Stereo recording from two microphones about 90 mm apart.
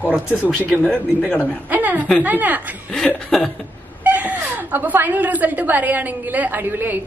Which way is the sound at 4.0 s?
15° right (ahead or behind).